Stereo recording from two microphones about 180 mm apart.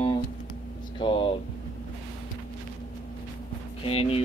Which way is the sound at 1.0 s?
30° left (ahead or behind).